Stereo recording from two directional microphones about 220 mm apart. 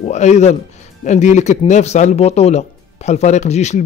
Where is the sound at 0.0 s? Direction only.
30° left (ahead or behind).